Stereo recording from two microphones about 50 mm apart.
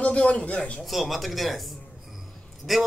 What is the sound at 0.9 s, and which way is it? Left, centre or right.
Speech, centre.